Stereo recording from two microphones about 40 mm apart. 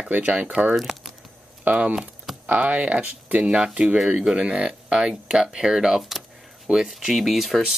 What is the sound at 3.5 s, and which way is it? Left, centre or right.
Speech, right.